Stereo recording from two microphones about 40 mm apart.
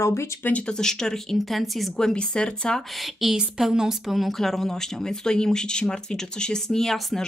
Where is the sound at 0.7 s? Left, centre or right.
Centre.